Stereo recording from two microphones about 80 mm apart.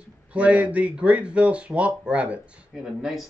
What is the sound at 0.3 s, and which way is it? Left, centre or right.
Speech, centre.